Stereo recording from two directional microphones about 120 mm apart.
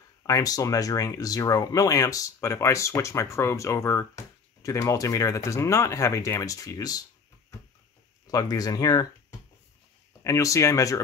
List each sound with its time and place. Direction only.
0.3 s speech: 30° left (ahead or behind)
8.3 s speech: 30° left (ahead or behind)
10.2 s speech: 25° left (ahead or behind)